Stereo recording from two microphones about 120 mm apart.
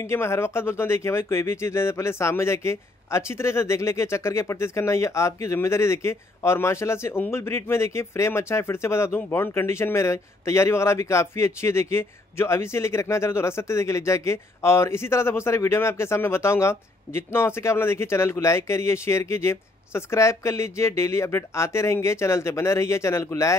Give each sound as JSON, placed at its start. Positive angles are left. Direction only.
{"t": 0.0, "sound": "speech", "side_deg": 20}